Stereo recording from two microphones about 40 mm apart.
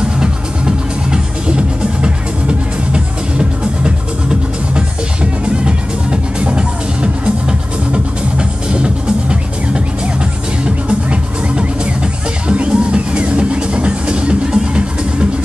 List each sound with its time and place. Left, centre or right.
0.2 s music: right
10.6 s music: right